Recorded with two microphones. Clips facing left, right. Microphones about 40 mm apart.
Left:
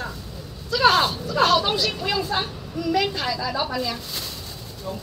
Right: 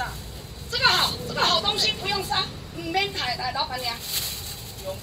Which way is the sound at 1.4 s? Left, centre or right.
Right.